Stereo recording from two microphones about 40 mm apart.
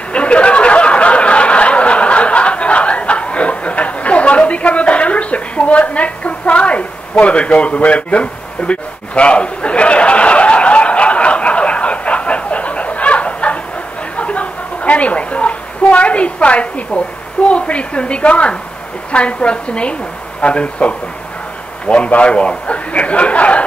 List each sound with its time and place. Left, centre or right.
0.1 s snicker: left
14.1 s a sound: left
17.5 s a woman's voice: left